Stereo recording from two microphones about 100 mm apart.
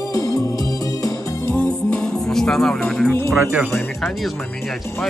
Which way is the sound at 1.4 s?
20° left (ahead or behind).